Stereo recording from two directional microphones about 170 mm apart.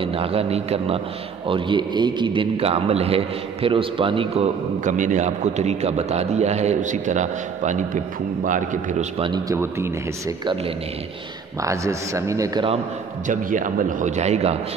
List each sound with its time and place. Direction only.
0.0 s a man's voice: 35° right (ahead or behind)
9.2 s a man's voice: 25° right (ahead or behind)
11.6 s speech: 20° right (ahead or behind)
13.3 s a man's voice: 50° right (ahead or behind)